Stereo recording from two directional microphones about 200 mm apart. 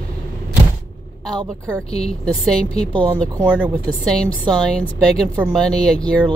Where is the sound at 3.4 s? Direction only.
5° right (ahead or behind).